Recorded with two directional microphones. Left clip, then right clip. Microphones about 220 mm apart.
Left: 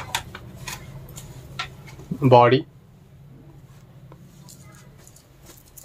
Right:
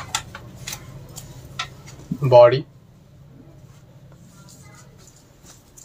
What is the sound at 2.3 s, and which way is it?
Speech, 50° left (ahead or behind).